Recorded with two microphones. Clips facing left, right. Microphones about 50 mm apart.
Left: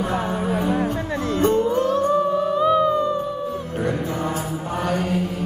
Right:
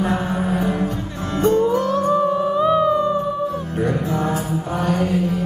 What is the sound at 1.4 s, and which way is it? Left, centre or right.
Music, left.